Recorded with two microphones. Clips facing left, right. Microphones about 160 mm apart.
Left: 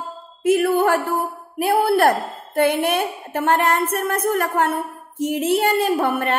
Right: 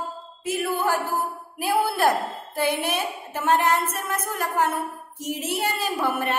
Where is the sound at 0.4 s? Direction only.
60° left (ahead or behind).